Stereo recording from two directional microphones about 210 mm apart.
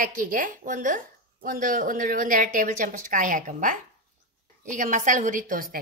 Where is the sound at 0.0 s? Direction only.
40° right (ahead or behind).